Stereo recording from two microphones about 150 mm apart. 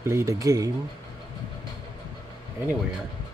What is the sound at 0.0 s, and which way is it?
Speech, 20° right (ahead or behind).